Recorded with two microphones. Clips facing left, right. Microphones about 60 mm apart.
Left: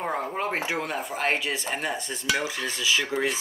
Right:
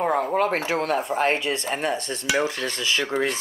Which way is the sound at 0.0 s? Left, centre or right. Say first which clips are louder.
Right 7 dB; right.